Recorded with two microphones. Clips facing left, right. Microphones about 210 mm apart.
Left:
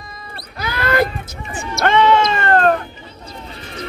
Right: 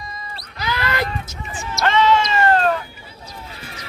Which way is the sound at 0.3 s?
55° left (ahead or behind).